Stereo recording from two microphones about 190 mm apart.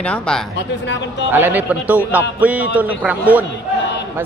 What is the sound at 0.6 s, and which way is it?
Speech, 70° left (ahead or behind).